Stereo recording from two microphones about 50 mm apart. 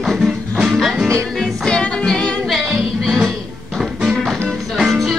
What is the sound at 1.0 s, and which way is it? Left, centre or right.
Music, right.